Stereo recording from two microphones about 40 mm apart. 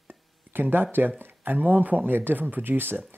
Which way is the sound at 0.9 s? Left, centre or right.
Right.